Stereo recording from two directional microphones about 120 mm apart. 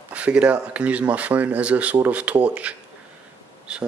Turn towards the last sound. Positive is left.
turn(degrees=-5)  # may be behind; listen again after turning